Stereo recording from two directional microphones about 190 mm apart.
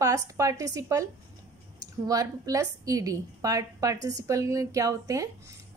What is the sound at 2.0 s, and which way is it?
A woman's voice, 20° right (ahead or behind).